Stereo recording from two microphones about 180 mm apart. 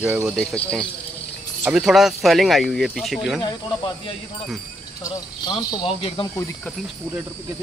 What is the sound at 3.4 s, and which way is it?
Speech, 25° left (ahead or behind).